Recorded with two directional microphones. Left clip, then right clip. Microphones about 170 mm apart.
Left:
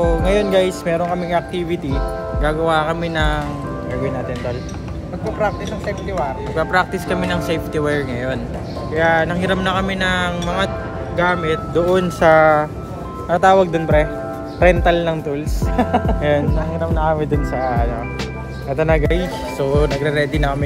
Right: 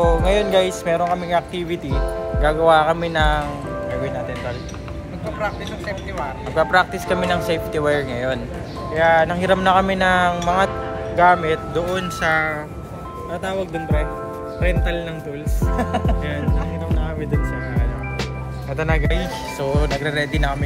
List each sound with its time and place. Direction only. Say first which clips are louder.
0.0 s speech: even; 5° left (ahead or behind)
6.7 s speech: left 1 dB; 15° left (ahead or behind)
7.2 s speech: right 1 dB; 5° left (ahead or behind)
11.9 s speech: left 8 dB; 40° left (ahead or behind)
18.8 s speech: left 6 dB; 20° left (ahead or behind)
19.0 s speech: left 4 dB; 30° left (ahead or behind)